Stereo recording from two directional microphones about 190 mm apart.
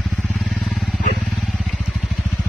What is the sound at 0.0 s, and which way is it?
Vehicle, centre (ahead or behind).